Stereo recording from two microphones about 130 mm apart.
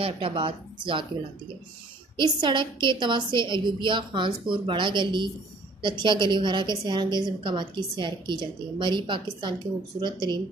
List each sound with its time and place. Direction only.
0.0 s a woman's voice: 45° right (ahead or behind)
2.1 s a woman's voice: 35° right (ahead or behind)